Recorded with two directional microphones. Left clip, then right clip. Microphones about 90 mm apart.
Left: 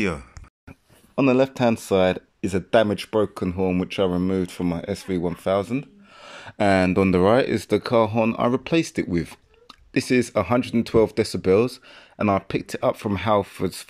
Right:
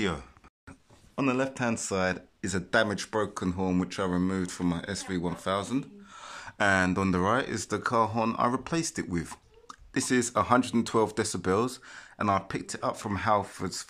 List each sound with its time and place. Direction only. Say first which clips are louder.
1.1 s speech: left 9 dB; 45° left (ahead or behind); by 5.8 s 20° left (ahead or behind)
6.1 s a sound: left 2 dB; 30° left (ahead or behind)
6.6 s speech: left 5 dB; 45° left (ahead or behind)
6.9 s speech: left 9 dB; 30° left (ahead or behind)
7.2 s speech: left 9 dB; 45° left (ahead or behind)
8.1 s speech: left 6 dB; 25° left (ahead or behind)